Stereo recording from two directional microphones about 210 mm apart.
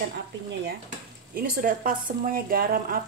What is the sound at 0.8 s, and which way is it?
Speech, 40° right (ahead or behind).